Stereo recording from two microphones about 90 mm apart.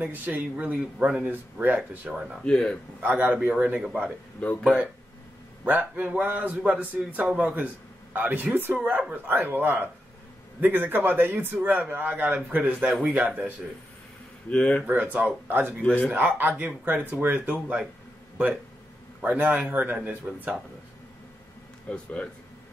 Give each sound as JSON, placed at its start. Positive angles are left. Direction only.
{"t": 0.0, "sound": "speech", "side_deg": -20}
{"t": 2.4, "sound": "speech", "side_deg": 10}
{"t": 3.0, "sound": "a man's voice", "side_deg": -20}
{"t": 4.4, "sound": "speech", "side_deg": 10}
{"t": 5.7, "sound": "a man's voice", "side_deg": -20}
{"t": 14.5, "sound": "speech", "side_deg": 15}
{"t": 14.9, "sound": "a man's voice", "side_deg": -20}
{"t": 19.2, "sound": "a man's voice", "side_deg": -20}
{"t": 21.8, "sound": "speech", "side_deg": 15}